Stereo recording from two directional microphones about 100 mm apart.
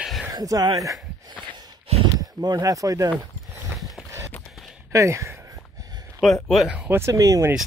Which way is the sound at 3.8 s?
Centre (ahead or behind).